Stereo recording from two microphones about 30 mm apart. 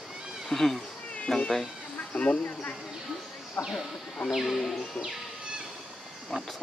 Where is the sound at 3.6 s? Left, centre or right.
Left.